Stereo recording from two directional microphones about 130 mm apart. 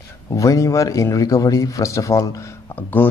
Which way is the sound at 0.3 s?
25° left (ahead or behind).